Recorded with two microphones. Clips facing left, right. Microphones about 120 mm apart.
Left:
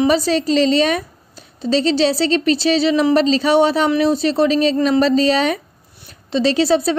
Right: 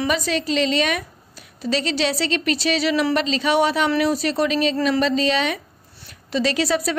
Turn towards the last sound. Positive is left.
turn(degrees=30)  # may be behind; listen again after turning